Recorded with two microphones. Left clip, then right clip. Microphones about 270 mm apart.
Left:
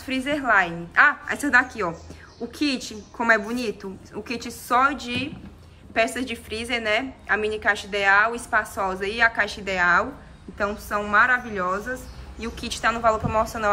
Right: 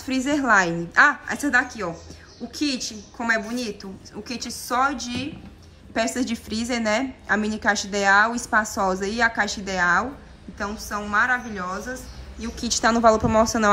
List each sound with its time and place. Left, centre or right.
0.0 s a woman's voice: centre